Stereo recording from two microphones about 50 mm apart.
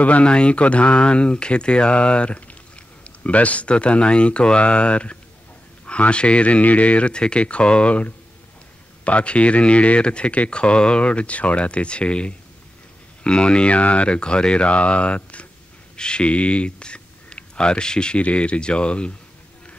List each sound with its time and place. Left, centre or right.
0.0 s speech: left